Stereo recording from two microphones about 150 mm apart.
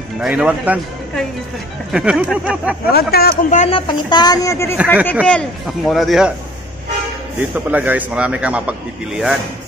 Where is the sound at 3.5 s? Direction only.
45° left (ahead or behind).